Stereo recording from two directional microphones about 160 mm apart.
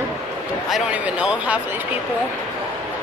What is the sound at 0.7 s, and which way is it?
Speech, 10° right (ahead or behind).